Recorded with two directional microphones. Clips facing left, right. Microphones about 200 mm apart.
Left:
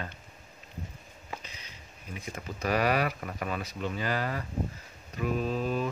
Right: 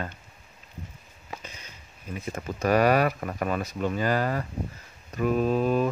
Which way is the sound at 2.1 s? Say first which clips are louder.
Right 6 dB; 45° right (ahead or behind).